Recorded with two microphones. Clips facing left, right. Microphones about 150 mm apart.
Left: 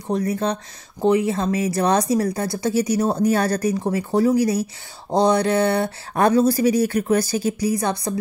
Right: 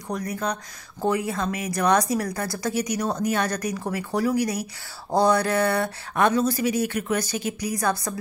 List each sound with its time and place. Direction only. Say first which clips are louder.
0.1 s speech: left 6 dB; 30° left (ahead or behind)